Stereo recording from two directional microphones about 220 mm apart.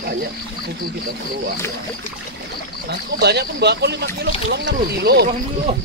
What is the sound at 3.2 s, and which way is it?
Speech, 50° right (ahead or behind).